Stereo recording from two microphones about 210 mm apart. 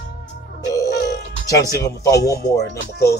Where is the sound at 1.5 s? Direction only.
15° left (ahead or behind).